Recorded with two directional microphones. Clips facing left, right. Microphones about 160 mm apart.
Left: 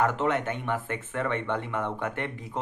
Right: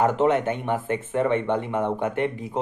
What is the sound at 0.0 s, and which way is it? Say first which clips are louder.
Speech: right 6 dB; 20° right (ahead or behind).